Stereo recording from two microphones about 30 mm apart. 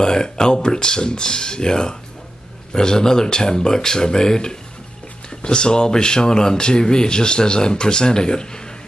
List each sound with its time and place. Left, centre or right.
0.0 s speech: left